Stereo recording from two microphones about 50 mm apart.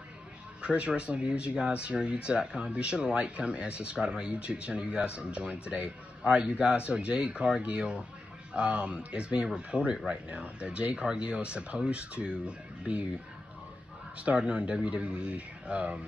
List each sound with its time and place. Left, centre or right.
0.6 s speech: right
14.2 s speech: right